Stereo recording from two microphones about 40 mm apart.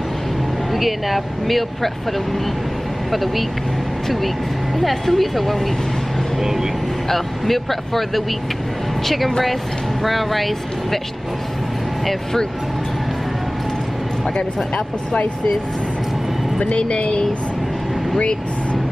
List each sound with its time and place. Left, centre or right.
0.7 s speech: centre
3.1 s speech: centre
4.7 s speech: centre
6.4 s speech: centre
7.1 s speech: centre
16.7 s a woman's voice: left